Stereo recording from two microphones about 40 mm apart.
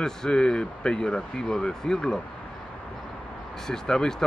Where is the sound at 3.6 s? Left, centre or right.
Centre.